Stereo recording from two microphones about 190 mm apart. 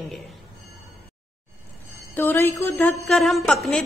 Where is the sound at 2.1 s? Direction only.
10° left (ahead or behind).